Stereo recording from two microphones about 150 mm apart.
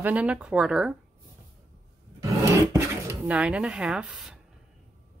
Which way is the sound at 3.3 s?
5° right (ahead or behind).